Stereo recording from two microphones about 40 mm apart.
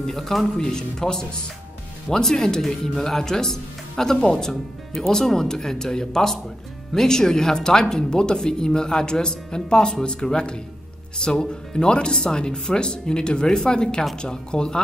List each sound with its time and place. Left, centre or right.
0.0 s speech: centre
2.2 s speech: centre